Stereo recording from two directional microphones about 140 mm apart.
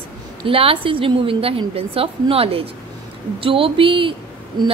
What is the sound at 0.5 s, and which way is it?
A woman's voice, 40° right (ahead or behind).